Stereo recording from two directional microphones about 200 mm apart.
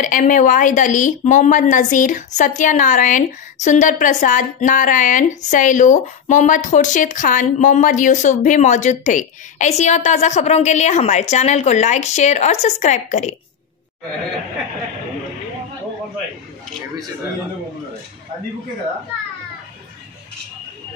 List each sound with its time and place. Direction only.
0.0 s a woman's voice: 40° left (ahead or behind)